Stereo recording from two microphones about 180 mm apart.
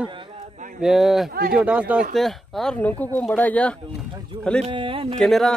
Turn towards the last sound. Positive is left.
turn(degrees=0)  # may be behind; listen again after turning